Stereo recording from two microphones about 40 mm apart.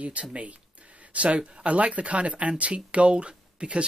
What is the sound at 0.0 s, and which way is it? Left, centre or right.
Speech, right.